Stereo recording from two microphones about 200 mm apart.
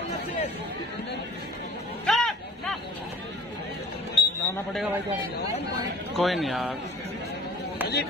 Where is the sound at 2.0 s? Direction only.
Centre (ahead or behind).